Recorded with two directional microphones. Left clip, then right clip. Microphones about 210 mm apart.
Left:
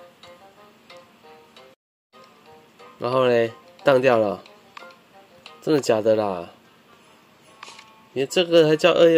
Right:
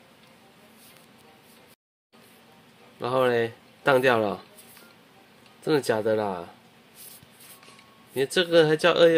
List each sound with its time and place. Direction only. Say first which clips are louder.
3.0 s speech: left 4 dB; 15° left (ahead or behind)
5.6 s speech: left 4 dB; 15° left (ahead or behind)
8.1 s speech: left 3 dB; 10° left (ahead or behind)